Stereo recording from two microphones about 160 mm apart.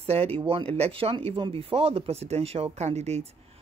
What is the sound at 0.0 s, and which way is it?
Speech, 40° right (ahead or behind).